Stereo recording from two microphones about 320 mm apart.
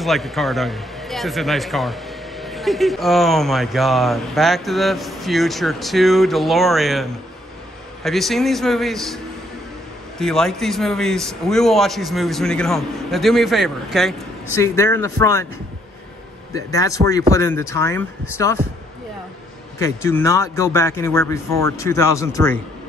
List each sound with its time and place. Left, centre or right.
0.0 s a man's voice: centre
16.5 s speech: centre
19.8 s speech: centre